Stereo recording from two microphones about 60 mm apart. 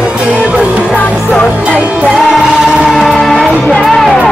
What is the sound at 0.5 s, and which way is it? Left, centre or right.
Music, right.